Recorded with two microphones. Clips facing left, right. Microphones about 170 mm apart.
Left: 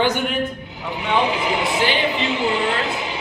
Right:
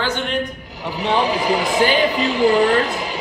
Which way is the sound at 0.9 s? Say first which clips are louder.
Right 2 dB; 35° right (ahead or behind).